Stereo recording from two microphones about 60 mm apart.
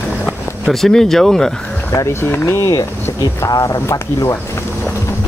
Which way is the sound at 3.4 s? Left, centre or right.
Left.